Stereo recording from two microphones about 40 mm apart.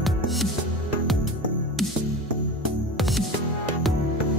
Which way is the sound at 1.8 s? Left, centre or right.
Centre.